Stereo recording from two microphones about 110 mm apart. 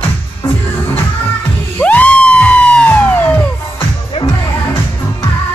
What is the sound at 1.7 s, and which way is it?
Music, 15° left (ahead or behind).